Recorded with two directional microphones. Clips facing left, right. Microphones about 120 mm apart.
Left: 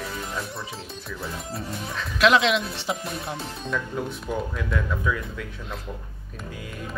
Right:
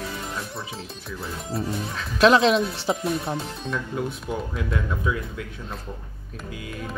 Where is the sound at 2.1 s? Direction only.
35° right (ahead or behind).